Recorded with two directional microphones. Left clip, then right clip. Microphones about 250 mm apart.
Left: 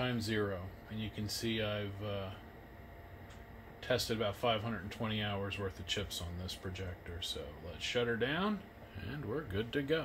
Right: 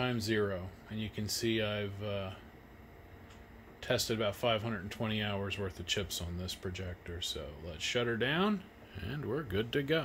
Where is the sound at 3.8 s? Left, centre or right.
Right.